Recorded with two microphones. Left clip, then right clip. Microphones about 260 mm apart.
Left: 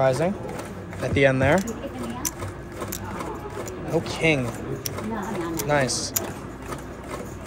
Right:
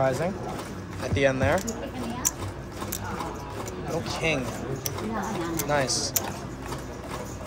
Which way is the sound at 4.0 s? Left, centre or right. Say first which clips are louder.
Left 5 dB; left.